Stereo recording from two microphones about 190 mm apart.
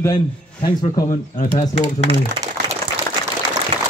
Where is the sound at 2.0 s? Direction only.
30° right (ahead or behind).